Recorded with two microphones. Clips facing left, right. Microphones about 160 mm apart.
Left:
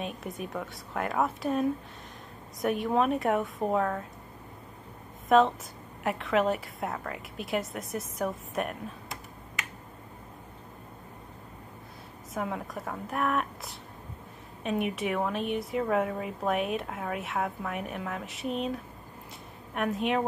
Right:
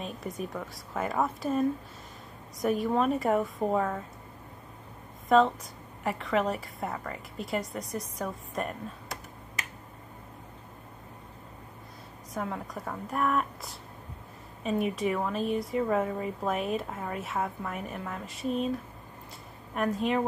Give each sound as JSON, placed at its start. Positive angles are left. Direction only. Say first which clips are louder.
{"t": 0.0, "sound": "a woman's voice", "louder": "even", "side_deg": 0}
{"t": 6.0, "sound": "a woman's voice", "louder": "left 2 dB", "side_deg": 0}
{"t": 12.4, "sound": "a woman's voice", "louder": "left 1 dB", "side_deg": 5}
{"t": 19.7, "sound": "a woman's voice", "louder": "even", "side_deg": 0}